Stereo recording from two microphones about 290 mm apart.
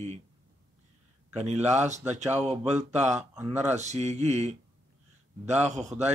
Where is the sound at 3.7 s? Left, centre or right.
Right.